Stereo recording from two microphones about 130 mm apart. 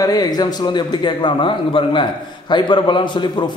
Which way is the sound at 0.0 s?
30° left (ahead or behind).